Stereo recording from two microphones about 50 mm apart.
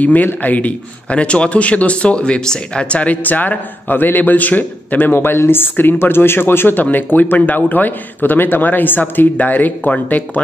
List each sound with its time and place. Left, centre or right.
0.0 s a man's voice: left